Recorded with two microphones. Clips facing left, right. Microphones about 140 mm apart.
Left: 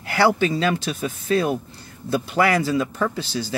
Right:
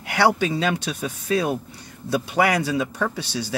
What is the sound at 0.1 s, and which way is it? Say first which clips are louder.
Speech: left 1 dB; 65° right (ahead or behind).